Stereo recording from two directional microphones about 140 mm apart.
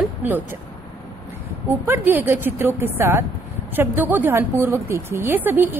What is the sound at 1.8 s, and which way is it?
A woman's voice, 15° right (ahead or behind).